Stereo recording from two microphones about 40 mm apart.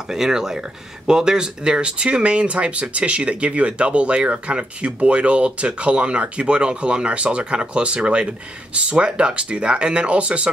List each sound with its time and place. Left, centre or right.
0.1 s speech: centre; by 10.5 s right